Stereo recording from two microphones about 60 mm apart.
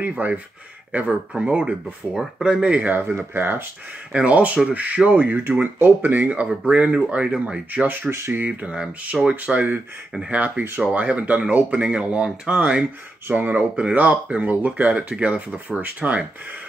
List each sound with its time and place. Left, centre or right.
0.2 s speech: right
1.3 s speech: centre
2.8 s speech: right
4.1 s speech: right
10.1 s speech: centre